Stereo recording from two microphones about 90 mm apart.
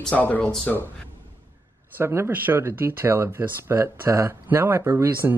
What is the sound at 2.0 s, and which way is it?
Speech, 30° right (ahead or behind).